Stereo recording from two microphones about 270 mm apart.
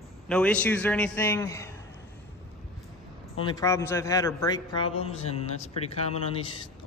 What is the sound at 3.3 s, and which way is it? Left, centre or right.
Speech, centre.